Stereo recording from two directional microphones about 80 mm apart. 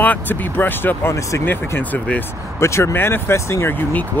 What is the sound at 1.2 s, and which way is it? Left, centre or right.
Speech, left.